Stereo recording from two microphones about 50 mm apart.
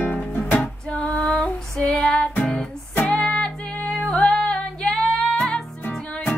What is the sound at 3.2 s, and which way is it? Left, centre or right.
Music, left.